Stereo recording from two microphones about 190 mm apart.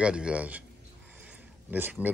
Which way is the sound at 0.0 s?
5° right (ahead or behind).